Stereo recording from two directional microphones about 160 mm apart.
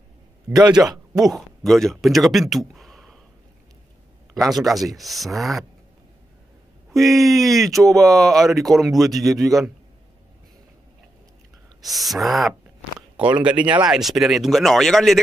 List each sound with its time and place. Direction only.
0.6 s a man's voice: 25° right (ahead or behind)
1.2 s speech: centre (ahead or behind)
4.3 s speech: centre (ahead or behind)
6.9 s speech: centre (ahead or behind)
11.8 s speech: centre (ahead or behind)